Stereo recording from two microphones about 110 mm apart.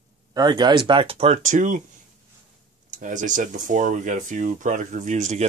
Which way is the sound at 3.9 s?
90° right.